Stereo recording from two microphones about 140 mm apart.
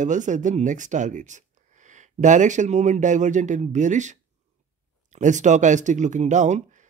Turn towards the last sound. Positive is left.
turn(degrees=-60)  # may be behind; listen again after turning